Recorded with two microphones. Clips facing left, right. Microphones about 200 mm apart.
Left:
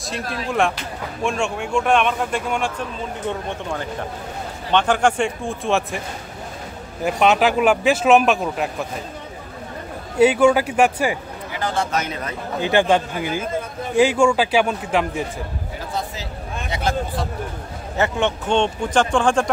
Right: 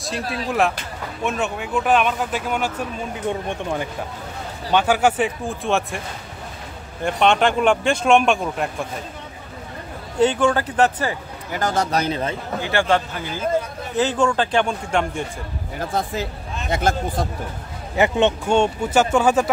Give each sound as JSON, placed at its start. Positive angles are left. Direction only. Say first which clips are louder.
{"t": 0.5, "sound": "speech", "louder": "even", "side_deg": 0}
{"t": 10.1, "sound": "a man's voice", "louder": "left 3 dB", "side_deg": 10}
{"t": 11.5, "sound": "a man's voice", "louder": "right 2 dB", "side_deg": -40}
{"t": 12.6, "sound": "a man's voice", "louder": "left 3 dB", "side_deg": 15}
{"t": 16.7, "sound": "speech", "louder": "right 2 dB", "side_deg": -45}
{"t": 17.9, "sound": "speech", "louder": "right 3 dB", "side_deg": -15}